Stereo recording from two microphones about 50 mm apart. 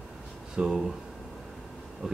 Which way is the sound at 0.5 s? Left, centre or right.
Centre.